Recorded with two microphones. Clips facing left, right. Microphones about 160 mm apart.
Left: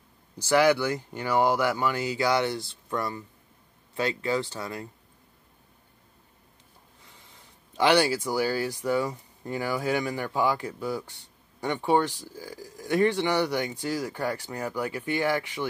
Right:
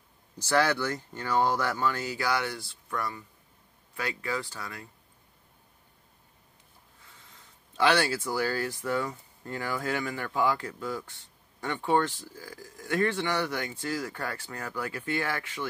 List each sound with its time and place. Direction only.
0.4 s speech: 15° left (ahead or behind)
7.3 s speech: 15° left (ahead or behind)